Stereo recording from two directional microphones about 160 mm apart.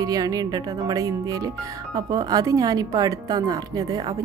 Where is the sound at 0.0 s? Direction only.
25° right (ahead or behind).